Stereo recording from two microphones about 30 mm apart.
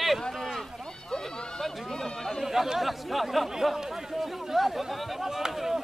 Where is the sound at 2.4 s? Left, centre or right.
Centre.